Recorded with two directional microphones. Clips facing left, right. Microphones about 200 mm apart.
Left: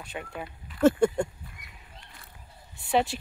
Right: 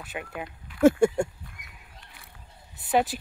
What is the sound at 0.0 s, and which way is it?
Speech, 5° right (ahead or behind).